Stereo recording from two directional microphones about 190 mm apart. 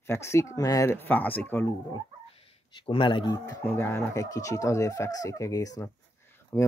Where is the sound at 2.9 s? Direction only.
25° left (ahead or behind).